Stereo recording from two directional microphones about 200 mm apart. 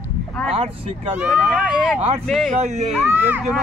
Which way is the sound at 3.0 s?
10° right (ahead or behind).